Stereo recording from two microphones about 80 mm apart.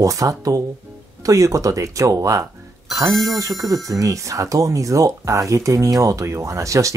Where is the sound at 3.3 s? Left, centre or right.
Right.